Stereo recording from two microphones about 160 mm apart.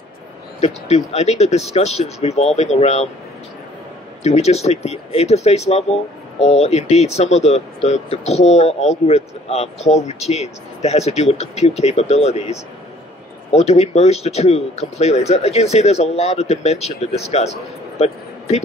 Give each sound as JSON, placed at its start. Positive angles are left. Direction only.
{"t": 0.6, "sound": "speech", "side_deg": 45}
{"t": 4.2, "sound": "speech", "side_deg": 40}